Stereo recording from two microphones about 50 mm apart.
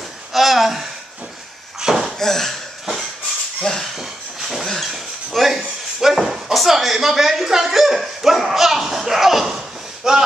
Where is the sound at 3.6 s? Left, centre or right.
Centre.